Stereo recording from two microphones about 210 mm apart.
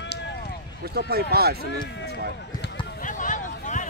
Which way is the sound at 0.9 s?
50° right (ahead or behind).